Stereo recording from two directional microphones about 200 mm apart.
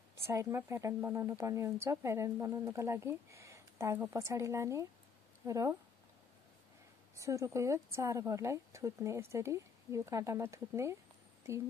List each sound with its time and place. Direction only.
0.1 s speech: 15° right (ahead or behind)
7.2 s speech: 15° right (ahead or behind)